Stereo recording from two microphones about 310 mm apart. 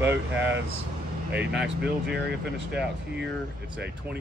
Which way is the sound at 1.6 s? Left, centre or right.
Right.